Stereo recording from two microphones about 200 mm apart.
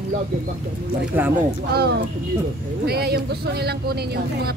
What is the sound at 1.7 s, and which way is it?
Speech, 50° right (ahead or behind).